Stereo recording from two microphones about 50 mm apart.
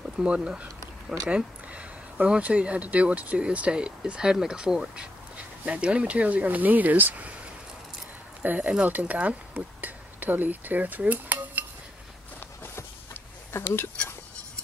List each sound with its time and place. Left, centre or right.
0.2 s speech: right
8.4 s speech: right
13.5 s speech: left